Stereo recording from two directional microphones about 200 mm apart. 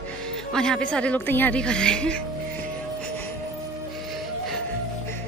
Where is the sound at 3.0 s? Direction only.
5° left (ahead or behind).